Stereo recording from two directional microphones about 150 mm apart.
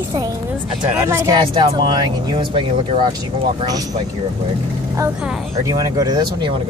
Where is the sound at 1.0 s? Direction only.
20° right (ahead or behind).